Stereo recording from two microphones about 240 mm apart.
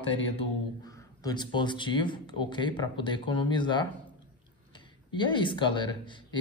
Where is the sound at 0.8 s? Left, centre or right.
Centre.